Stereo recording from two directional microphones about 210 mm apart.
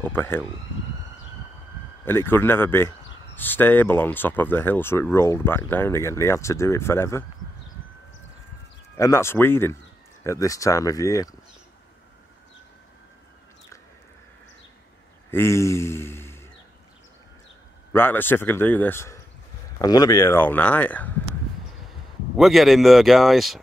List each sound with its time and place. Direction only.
0.0 s speech: 10° left (ahead or behind)
2.0 s speech: 10° left (ahead or behind)
8.9 s speech: 15° left (ahead or behind)
15.3 s a man's voice: 15° left (ahead or behind)
17.9 s speech: 10° left (ahead or behind)
22.4 s speech: centre (ahead or behind)